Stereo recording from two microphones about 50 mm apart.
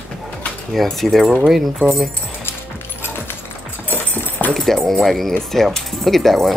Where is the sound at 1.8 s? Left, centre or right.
Left.